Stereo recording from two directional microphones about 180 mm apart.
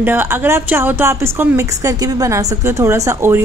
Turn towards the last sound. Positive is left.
turn(degrees=-15)  # may be behind; listen again after turning